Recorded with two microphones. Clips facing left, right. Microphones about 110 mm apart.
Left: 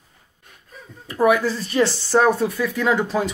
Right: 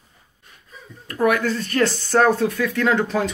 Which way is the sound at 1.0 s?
10° left (ahead or behind).